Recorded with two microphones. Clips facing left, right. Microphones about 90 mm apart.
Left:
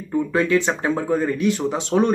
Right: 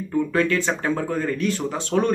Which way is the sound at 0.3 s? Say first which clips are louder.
Left 4 dB; 15° left (ahead or behind).